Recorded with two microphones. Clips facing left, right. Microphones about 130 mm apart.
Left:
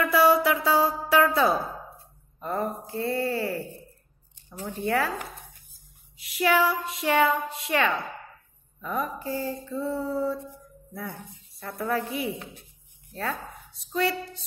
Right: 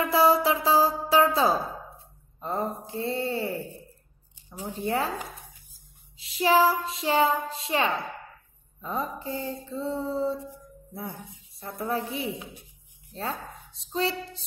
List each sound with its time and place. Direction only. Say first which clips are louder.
0.0 s music: left 1 dB; 25° right (ahead or behind)
1.9 s speech: even; 20° right (ahead or behind)
4.8 s speech: left 2 dB; 25° right (ahead or behind)
6.1 s speech: right 2 dB; 30° right (ahead or behind)